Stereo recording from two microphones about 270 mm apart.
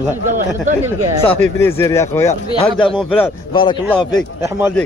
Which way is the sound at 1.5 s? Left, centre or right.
Centre.